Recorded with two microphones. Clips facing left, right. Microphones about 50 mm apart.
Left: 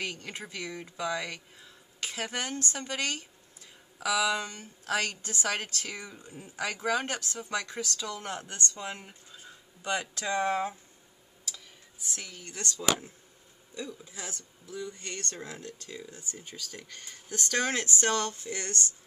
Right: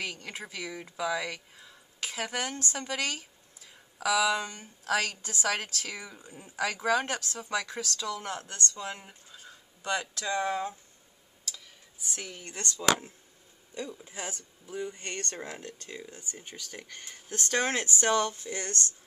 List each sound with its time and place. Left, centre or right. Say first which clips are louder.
0.0 s speech: even; centre
4.4 s speech: right 1 dB; right
4.8 s a woman's voice: right 1 dB; centre
8.4 s speech: even; centre
11.5 s a sound: even; centre
12.3 s speech: even; right